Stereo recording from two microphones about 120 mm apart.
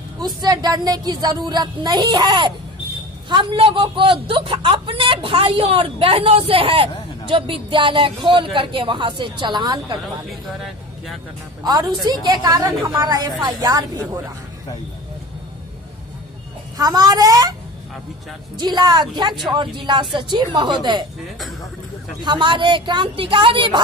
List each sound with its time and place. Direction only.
0.2 s a woman's voice: 35° right (ahead or behind)
11.6 s a woman's voice: 35° right (ahead or behind)
16.7 s a woman's voice: 35° right (ahead or behind)
18.6 s a woman's voice: 35° right (ahead or behind)
22.2 s a woman's voice: 40° right (ahead or behind)